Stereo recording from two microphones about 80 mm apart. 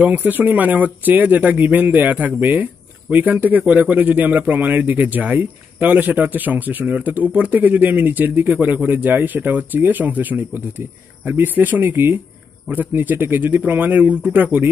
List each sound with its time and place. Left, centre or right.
0.0 s speech: right